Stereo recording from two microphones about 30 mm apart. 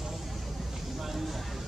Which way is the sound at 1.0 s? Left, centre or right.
Centre.